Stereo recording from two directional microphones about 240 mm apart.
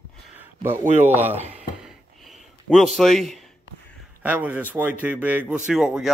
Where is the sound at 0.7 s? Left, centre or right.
Right.